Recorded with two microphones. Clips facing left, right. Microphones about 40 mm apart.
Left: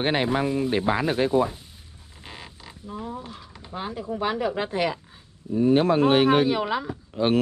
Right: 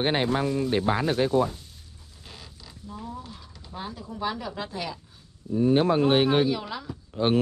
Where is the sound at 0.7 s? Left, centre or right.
Left.